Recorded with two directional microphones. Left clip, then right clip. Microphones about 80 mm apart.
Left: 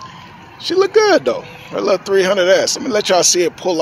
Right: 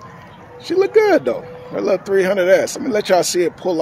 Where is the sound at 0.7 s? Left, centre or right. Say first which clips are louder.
Left 1 dB; right.